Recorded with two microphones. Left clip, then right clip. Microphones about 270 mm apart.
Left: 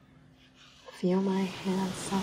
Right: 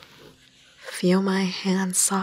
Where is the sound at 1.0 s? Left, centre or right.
Right.